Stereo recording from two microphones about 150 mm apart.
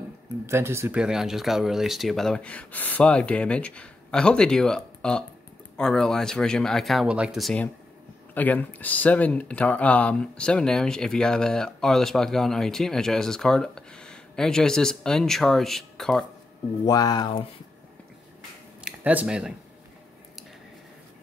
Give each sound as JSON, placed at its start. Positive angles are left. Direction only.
{"t": 0.5, "sound": "speech", "side_deg": -15}
{"t": 8.4, "sound": "speech", "side_deg": 10}
{"t": 16.8, "sound": "speech", "side_deg": 25}
{"t": 18.9, "sound": "speech", "side_deg": -10}